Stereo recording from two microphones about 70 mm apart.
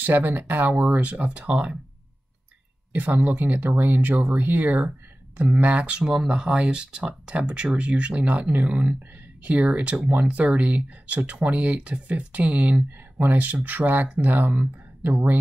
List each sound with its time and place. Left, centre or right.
0.0 s speech: right
2.9 s speech: right